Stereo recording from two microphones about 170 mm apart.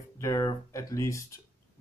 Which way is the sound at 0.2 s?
20° left (ahead or behind).